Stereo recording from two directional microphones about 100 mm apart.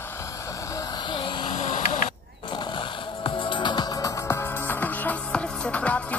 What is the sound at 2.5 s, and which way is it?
Music, 55° left (ahead or behind).